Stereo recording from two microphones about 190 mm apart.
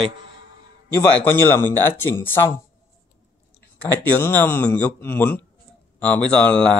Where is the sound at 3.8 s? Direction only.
10° left (ahead or behind).